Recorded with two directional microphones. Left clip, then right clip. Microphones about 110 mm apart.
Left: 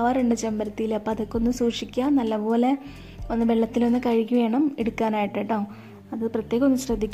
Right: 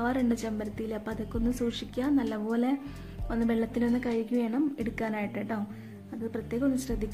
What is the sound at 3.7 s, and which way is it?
A woman's voice, 45° left (ahead or behind).